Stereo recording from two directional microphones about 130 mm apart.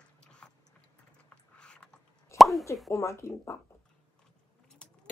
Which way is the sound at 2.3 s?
Centre (ahead or behind).